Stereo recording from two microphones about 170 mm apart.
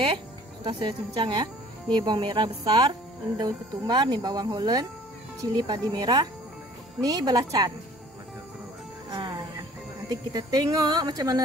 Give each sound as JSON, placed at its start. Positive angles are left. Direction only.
{"t": 0.7, "sound": "speech", "side_deg": -30}
{"t": 9.1, "sound": "speech", "side_deg": -25}